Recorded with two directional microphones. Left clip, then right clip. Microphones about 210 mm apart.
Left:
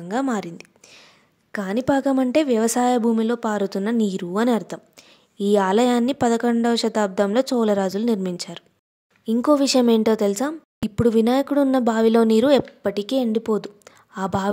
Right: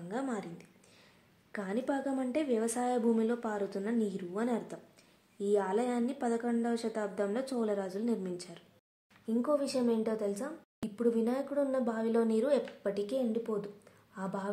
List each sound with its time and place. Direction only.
0.1 s a woman's voice: 45° left (ahead or behind)